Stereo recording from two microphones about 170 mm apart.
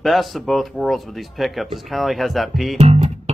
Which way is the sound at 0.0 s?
Centre (ahead or behind).